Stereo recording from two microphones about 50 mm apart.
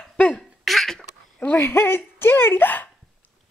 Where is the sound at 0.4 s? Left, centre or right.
Centre.